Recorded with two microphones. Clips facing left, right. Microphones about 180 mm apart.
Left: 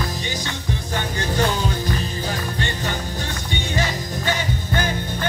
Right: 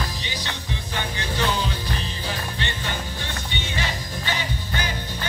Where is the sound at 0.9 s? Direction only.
45° left (ahead or behind).